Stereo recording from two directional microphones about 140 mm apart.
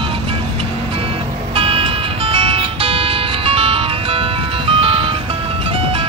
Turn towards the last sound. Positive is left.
turn(degrees=-40)  # may be behind; listen again after turning